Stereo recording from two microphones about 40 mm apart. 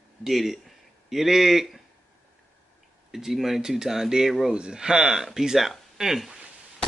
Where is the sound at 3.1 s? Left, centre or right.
Centre.